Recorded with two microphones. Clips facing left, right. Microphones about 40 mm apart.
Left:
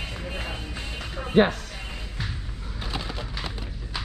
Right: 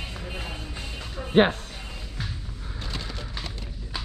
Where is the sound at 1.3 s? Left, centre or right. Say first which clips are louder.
Even; right.